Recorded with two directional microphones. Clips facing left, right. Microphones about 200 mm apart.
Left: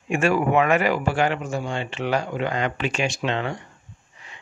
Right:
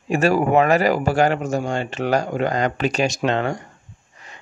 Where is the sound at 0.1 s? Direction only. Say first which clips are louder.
Right 3 dB; 40° right (ahead or behind).